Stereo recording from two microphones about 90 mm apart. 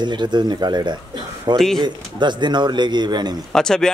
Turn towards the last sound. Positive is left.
turn(degrees=5)  # may be behind; listen again after turning